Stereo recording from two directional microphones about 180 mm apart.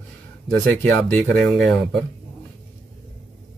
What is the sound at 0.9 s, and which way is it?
Speech, 10° left (ahead or behind).